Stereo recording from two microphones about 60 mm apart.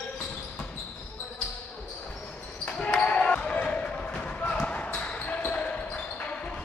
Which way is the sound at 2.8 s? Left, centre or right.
Centre.